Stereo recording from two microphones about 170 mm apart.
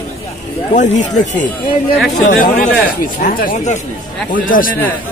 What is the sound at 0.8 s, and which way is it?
Speech, 45° left (ahead or behind).